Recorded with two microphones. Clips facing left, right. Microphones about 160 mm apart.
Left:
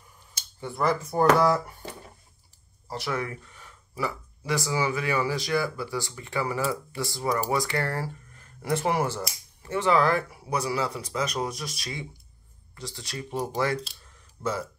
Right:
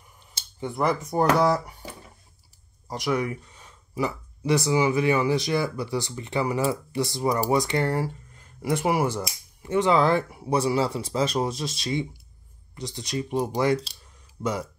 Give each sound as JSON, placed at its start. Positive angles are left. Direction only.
{"t": 0.3, "sound": "speech", "side_deg": -20}
{"t": 2.9, "sound": "speech", "side_deg": -15}